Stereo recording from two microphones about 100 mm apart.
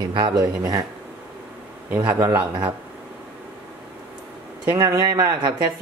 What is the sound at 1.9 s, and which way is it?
Speech, 20° right (ahead or behind).